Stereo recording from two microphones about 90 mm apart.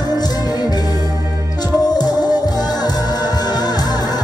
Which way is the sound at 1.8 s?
50° left (ahead or behind).